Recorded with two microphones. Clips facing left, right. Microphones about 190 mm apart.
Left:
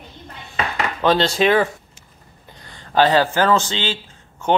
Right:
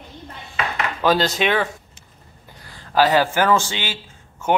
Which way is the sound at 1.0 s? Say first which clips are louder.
Left 2 dB; 5° right (ahead or behind).